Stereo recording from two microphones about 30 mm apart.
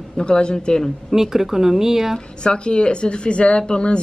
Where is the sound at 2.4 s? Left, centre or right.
Left.